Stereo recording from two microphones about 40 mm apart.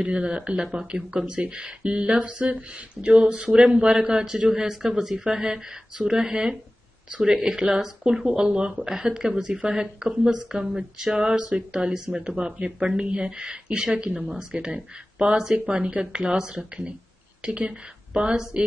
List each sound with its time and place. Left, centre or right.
0.0 s speech: right
8.9 s speech: centre
14.1 s speech: centre
14.5 s speech: right